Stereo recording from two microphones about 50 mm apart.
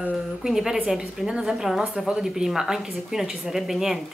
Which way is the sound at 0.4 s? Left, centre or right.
Centre.